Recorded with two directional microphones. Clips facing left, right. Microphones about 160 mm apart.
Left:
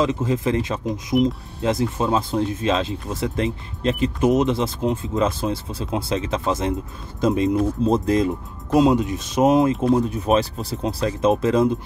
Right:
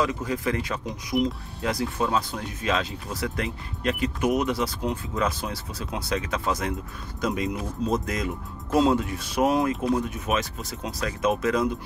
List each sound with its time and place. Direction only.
0.0 s speech: 25° left (ahead or behind)
8.7 s speech: 15° left (ahead or behind)